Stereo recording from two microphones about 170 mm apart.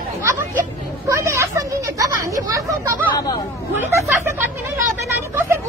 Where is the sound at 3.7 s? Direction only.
15° right (ahead or behind).